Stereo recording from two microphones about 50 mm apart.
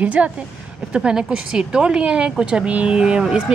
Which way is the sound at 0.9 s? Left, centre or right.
Centre.